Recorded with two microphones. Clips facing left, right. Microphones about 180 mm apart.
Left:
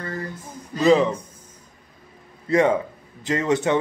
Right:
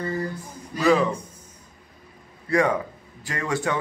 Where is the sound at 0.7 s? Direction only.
20° left (ahead or behind).